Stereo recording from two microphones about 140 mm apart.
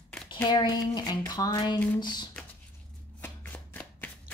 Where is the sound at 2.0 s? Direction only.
30° left (ahead or behind).